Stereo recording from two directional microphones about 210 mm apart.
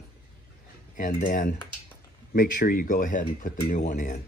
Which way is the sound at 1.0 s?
40° left (ahead or behind).